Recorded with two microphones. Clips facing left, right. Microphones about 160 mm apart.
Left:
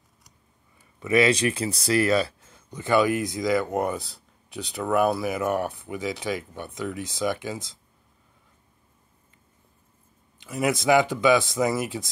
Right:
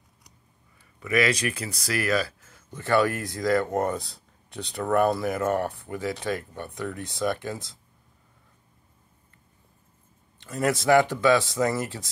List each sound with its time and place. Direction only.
0.9 s speech: 25° left (ahead or behind)
2.7 s speech: 15° left (ahead or behind)
10.4 s speech: 10° left (ahead or behind)